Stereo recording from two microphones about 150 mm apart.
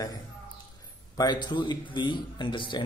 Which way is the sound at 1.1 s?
30° left (ahead or behind).